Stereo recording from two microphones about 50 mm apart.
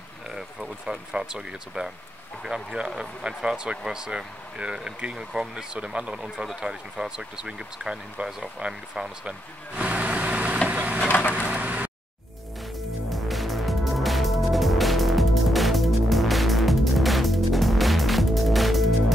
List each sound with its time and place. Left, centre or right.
0.3 s speech: centre
9.8 s vehicle: right
10.7 s a sound: right
13.1 s music: centre